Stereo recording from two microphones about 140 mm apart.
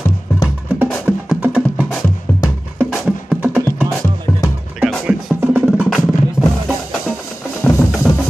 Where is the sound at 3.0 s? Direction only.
10° right (ahead or behind).